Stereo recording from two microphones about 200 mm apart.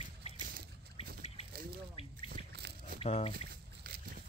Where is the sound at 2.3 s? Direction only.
50° right (ahead or behind).